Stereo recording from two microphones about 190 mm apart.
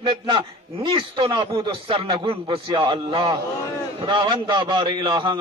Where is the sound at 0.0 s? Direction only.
25° right (ahead or behind).